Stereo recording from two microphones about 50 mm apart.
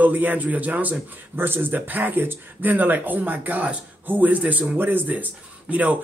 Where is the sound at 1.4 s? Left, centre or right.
Right.